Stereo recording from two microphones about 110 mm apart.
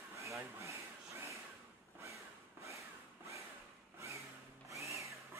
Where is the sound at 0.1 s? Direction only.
25° right (ahead or behind).